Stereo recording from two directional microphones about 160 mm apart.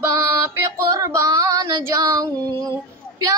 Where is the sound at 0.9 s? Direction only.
20° right (ahead or behind).